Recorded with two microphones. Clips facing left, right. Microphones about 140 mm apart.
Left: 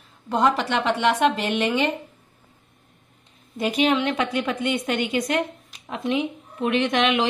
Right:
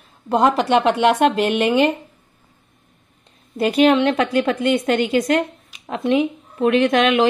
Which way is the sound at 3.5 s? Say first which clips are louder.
Right 6 dB; 60° right (ahead or behind).